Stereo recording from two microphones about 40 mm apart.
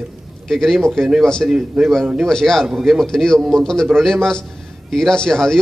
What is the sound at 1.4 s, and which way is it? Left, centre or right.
Speech, right.